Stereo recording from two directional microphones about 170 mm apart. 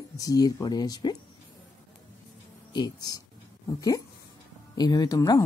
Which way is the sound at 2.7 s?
25° left (ahead or behind).